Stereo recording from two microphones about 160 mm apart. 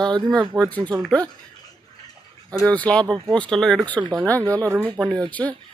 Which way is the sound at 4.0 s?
20° right (ahead or behind).